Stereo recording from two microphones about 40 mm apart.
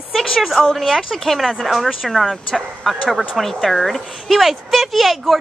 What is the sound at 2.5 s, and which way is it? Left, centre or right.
Speech, centre.